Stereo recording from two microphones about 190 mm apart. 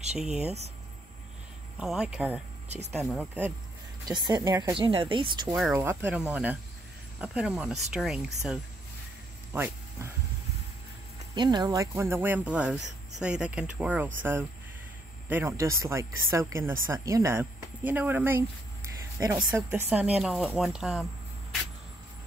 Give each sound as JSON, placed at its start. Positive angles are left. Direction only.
{"t": 1.8, "sound": "speech", "side_deg": -5}
{"t": 4.1, "sound": "speech", "side_deg": -25}
{"t": 5.5, "sound": "speech", "side_deg": -5}
{"t": 9.5, "sound": "speech", "side_deg": -10}
{"t": 11.3, "sound": "speech", "side_deg": -20}
{"t": 15.2, "sound": "speech", "side_deg": -10}